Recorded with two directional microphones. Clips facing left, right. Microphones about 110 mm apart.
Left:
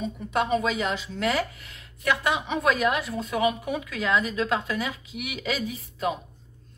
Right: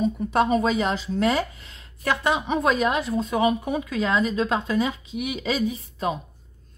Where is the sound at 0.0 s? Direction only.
35° right (ahead or behind).